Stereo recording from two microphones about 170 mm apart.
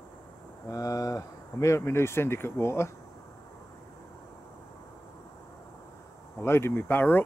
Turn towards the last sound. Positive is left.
turn(degrees=10)  # may be behind; listen again after turning